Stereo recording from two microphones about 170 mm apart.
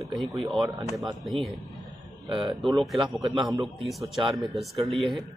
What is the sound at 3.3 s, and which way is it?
Speech, 25° right (ahead or behind).